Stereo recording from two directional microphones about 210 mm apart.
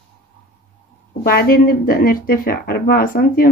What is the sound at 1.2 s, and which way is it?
Speech, 45° left (ahead or behind).